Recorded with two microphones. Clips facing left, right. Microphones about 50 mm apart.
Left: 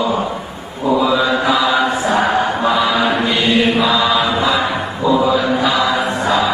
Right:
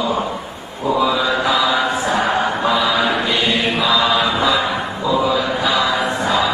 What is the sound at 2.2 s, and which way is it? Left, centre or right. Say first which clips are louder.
Music: left 2 dB; centre.